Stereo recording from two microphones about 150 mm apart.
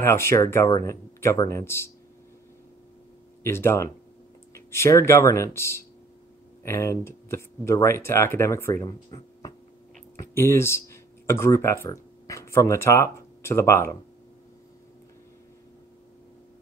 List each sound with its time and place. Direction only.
0.0 s speech: 15° left (ahead or behind)
3.4 s speech: 15° left (ahead or behind)
8.8 s speech: 30° left (ahead or behind)
10.1 s speech: 15° left (ahead or behind)